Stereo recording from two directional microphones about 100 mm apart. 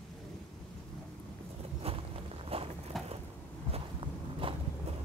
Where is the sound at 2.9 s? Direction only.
Centre (ahead or behind).